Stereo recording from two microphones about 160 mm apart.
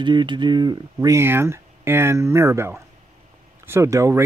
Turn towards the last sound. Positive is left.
turn(degrees=-20)  # may be behind; listen again after turning